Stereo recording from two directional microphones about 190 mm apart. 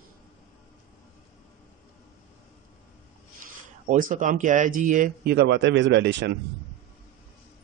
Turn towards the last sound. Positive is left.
turn(degrees=-65)  # may be behind; listen again after turning